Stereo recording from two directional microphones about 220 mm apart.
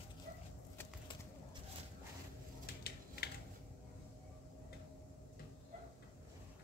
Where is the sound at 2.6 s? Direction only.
45° left (ahead or behind).